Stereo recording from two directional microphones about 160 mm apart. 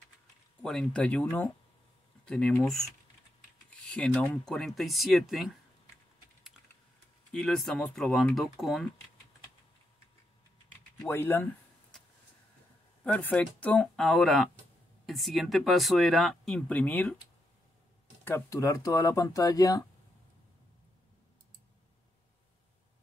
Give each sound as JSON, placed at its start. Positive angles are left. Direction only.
{"t": 0.6, "sound": "speech", "side_deg": 5}
{"t": 7.3, "sound": "speech", "side_deg": 5}
{"t": 11.1, "sound": "speech", "side_deg": 15}
{"t": 11.9, "sound": "vehicle", "side_deg": 5}
{"t": 13.0, "sound": "speech", "side_deg": 10}
{"t": 18.2, "sound": "speech", "side_deg": 20}